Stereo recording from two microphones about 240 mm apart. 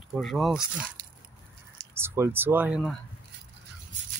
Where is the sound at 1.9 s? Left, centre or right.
Centre.